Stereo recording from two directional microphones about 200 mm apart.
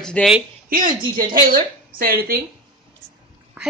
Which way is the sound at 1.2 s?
45° right (ahead or behind).